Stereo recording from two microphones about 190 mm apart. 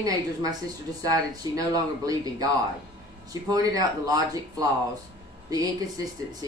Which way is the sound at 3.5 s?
20° right (ahead or behind).